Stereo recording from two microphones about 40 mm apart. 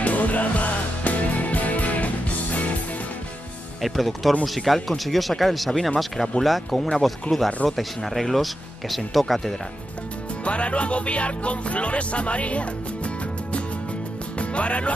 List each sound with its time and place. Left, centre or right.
0.0 s music: left
3.8 s speech: centre
5.7 s speech: centre
10.4 s music: left